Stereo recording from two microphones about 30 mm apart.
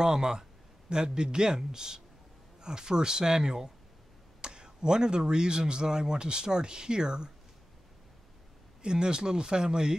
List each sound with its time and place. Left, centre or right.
0.0 s speech: right
8.8 s speech: right